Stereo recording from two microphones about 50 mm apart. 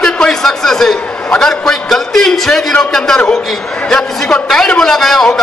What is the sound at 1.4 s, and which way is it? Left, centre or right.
A man's voice, centre.